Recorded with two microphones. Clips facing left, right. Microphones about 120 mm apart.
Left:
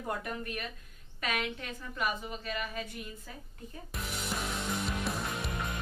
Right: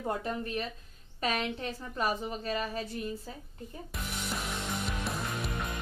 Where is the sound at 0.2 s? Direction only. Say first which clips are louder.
Right 4 dB; 30° right (ahead or behind).